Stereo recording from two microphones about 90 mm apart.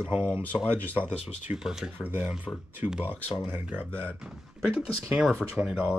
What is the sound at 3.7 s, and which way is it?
Speech, 20° right (ahead or behind).